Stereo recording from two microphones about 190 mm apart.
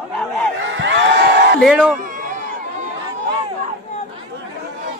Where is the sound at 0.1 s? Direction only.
5° left (ahead or behind).